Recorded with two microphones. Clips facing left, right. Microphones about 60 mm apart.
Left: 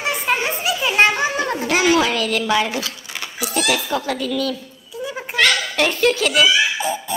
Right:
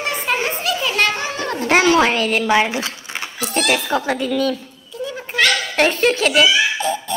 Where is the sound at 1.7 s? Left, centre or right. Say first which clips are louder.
Right 4 dB; right.